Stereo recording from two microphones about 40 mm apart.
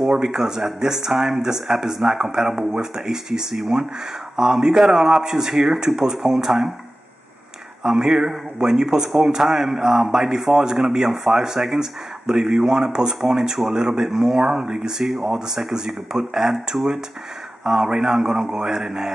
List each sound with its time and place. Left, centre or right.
0.1 s speech: centre
7.8 s speech: centre
17.6 s speech: centre
18.4 s a man's voice: right
18.7 s speech: centre